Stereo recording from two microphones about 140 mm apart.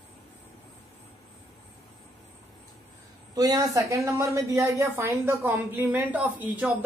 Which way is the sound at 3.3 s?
25° right (ahead or behind).